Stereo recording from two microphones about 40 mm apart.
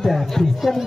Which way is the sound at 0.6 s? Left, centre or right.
Centre.